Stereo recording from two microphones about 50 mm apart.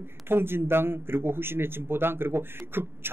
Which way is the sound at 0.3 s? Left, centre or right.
Right.